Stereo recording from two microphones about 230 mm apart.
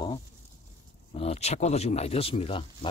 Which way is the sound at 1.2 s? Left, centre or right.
Left.